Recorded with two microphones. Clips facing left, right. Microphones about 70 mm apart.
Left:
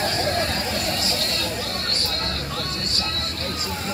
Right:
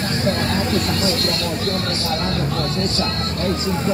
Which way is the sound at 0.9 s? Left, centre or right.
Centre.